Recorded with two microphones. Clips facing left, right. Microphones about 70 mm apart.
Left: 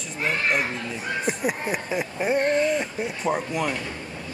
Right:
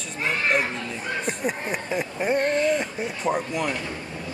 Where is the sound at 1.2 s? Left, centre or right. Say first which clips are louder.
Left 3 dB; centre.